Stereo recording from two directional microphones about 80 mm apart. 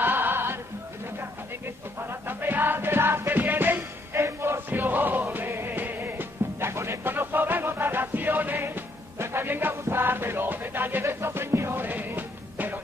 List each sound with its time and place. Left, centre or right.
0.0 s music: right
2.0 s music: right